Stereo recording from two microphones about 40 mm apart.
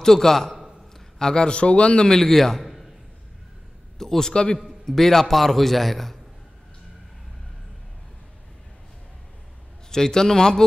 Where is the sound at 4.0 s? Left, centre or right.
Centre.